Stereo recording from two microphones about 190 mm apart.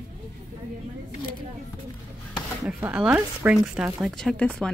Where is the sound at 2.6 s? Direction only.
5° right (ahead or behind).